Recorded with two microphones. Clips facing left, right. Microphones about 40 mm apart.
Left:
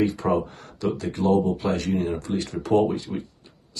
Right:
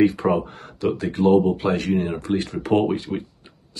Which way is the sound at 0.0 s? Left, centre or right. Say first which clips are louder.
Right 4 dB; right.